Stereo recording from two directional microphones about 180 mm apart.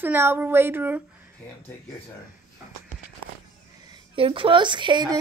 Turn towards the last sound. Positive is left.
turn(degrees=-25)  # may be behind; listen again after turning